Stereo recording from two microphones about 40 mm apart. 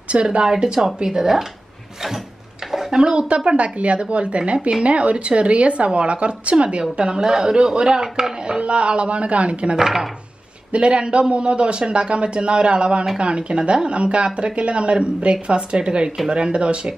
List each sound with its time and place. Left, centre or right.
0.1 s speech: right
0.5 s a woman's voice: centre
2.7 s a sound: centre
3.0 s speech: right
8.5 s speech: right
9.8 s a woman's voice: centre
10.7 s speech: right